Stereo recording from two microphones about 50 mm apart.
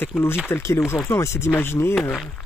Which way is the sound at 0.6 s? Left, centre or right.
Left.